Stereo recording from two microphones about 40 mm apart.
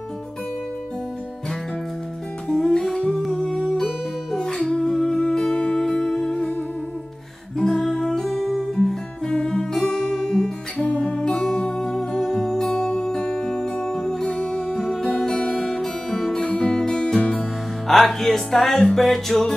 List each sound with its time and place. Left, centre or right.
2.4 s music: centre
7.5 s music: centre
8.7 s music: centre
14.7 s guitar: centre
16.4 s music: centre
17.4 s music: centre